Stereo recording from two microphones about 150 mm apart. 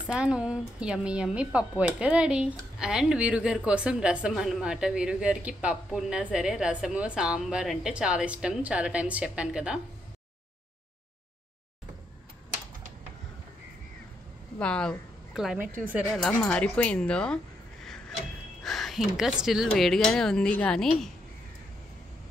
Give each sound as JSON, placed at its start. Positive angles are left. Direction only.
{"t": 0.0, "sound": "speech", "side_deg": -5}
{"t": 14.6, "sound": "speech", "side_deg": 5}
{"t": 16.2, "sound": "speech", "side_deg": 5}
{"t": 18.6, "sound": "speech", "side_deg": 0}